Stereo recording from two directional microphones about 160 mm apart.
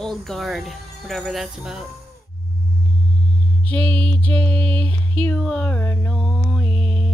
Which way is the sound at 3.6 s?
10° left (ahead or behind).